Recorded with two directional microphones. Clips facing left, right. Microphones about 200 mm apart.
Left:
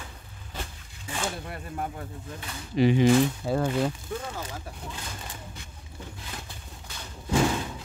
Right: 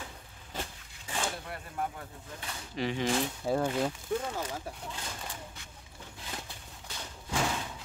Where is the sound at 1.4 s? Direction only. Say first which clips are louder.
Left 2 dB; 20° left (ahead or behind).